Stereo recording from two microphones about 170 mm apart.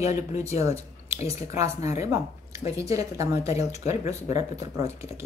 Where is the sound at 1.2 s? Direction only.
20° right (ahead or behind).